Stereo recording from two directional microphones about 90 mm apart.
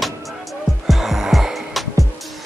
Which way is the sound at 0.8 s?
5° right (ahead or behind).